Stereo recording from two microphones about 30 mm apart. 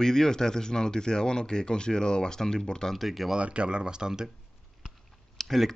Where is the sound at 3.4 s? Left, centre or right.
Right.